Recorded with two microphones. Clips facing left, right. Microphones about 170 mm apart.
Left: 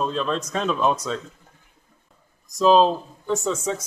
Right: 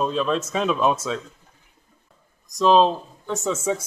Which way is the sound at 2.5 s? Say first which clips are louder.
Even; centre (ahead or behind).